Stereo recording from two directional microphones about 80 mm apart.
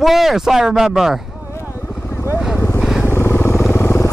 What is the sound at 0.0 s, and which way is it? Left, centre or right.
Speech, centre.